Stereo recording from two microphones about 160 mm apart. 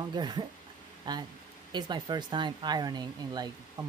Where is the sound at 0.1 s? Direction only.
25° right (ahead or behind).